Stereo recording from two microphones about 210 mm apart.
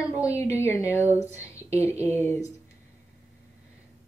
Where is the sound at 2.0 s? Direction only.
10° left (ahead or behind).